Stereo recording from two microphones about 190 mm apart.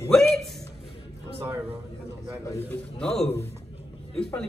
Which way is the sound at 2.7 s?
5° left (ahead or behind).